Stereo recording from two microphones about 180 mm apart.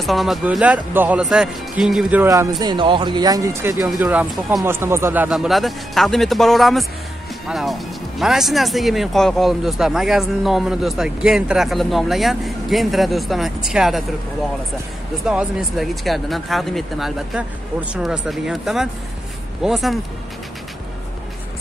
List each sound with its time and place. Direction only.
0.0 s speech: centre (ahead or behind)
2.6 s speech: 25° right (ahead or behind); by 14.0 s centre (ahead or behind)
15.2 s speech: centre (ahead or behind)